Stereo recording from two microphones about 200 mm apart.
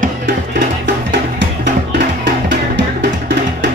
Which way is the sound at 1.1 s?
60° right (ahead or behind).